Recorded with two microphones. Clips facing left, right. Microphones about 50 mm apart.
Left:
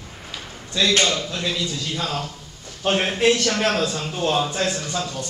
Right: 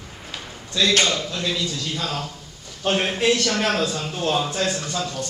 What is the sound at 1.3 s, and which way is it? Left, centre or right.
A man's voice, centre.